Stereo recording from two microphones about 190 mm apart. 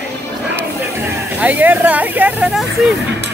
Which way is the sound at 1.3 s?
10° right (ahead or behind).